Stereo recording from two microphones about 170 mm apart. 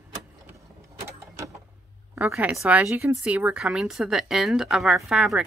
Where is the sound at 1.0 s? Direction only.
15° right (ahead or behind).